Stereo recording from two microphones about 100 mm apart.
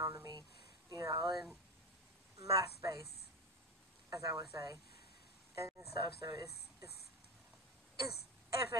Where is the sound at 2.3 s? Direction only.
35° right (ahead or behind).